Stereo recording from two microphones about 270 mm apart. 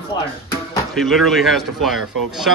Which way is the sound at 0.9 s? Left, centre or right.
Centre.